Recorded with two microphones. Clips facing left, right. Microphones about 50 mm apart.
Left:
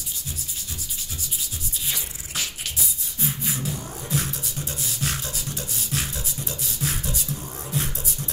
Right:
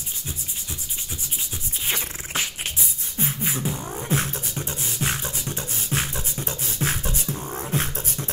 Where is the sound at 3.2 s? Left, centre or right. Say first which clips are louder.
Right 2 dB; right.